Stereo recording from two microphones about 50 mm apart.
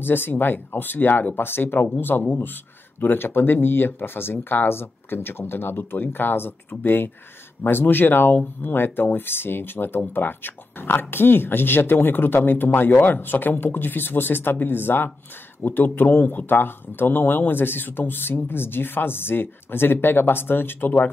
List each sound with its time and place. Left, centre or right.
0.0 s speech: left